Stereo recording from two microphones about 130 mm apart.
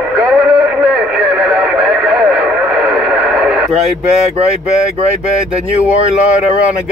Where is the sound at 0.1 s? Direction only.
5° right (ahead or behind).